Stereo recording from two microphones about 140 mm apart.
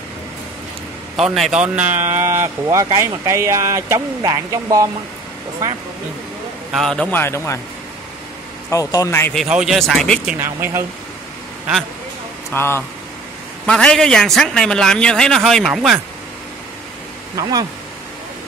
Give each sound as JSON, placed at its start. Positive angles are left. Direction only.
{"t": 1.1, "sound": "a man's voice", "side_deg": 0}
{"t": 2.1, "sound": "speech", "side_deg": -20}
{"t": 6.7, "sound": "a man's voice", "side_deg": 5}
{"t": 8.6, "sound": "a man's voice", "side_deg": 25}
{"t": 9.3, "sound": "a man's voice", "side_deg": 0}
{"t": 10.4, "sound": "speech", "side_deg": -20}
{"t": 12.4, "sound": "speech", "side_deg": 15}
{"t": 13.7, "sound": "a man's voice", "side_deg": 5}
{"t": 17.4, "sound": "speech", "side_deg": -30}